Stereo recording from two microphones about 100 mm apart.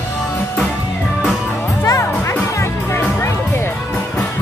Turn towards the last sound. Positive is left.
turn(degrees=25)  # may be behind; listen again after turning